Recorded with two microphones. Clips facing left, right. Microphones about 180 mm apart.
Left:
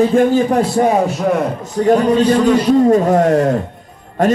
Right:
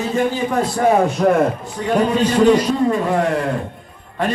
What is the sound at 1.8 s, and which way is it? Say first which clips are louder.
A man's voice: left 5 dB; 40° left (ahead or behind).